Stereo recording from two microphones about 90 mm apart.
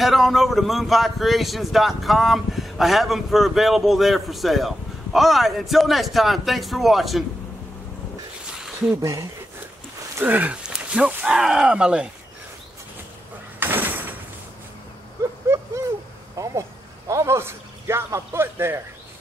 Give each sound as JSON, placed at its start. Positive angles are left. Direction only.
{"t": 0.0, "sound": "speech", "side_deg": 0}
{"t": 8.9, "sound": "speech", "side_deg": -35}
{"t": 10.2, "sound": "speech", "side_deg": -20}
{"t": 13.6, "sound": "door", "side_deg": -20}
{"t": 16.4, "sound": "a sound", "side_deg": -35}
{"t": 17.1, "sound": "a man's voice", "side_deg": -30}